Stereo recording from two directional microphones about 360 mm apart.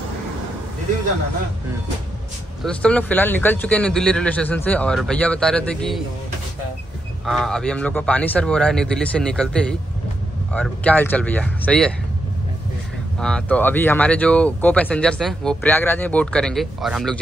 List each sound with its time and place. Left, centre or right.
2.6 s speech: centre
7.2 s speech: centre
13.2 s speech: centre